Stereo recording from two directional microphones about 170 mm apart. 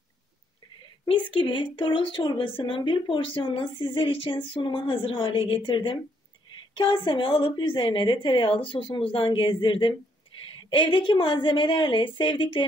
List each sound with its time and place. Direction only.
1.0 s a woman's voice: 30° left (ahead or behind)